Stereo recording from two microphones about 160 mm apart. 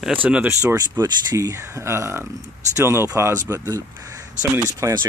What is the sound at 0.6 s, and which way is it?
Speech, 20° right (ahead or behind).